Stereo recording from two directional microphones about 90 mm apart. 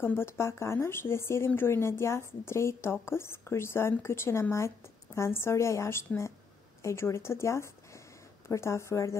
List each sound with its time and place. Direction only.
0.0 s a woman's voice: 25° left (ahead or behind)